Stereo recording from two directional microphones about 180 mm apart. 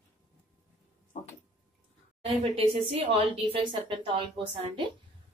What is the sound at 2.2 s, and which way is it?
A woman's voice, 30° right (ahead or behind).